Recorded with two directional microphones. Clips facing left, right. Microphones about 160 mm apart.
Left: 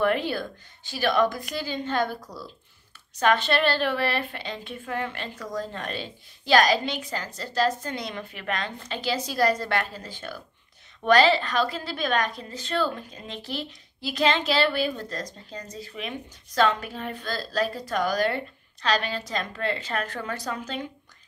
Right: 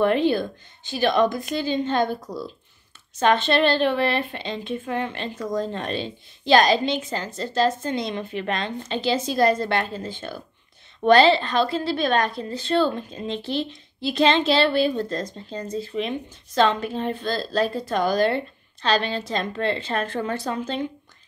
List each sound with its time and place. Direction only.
0.0 s a woman's voice: 20° right (ahead or behind)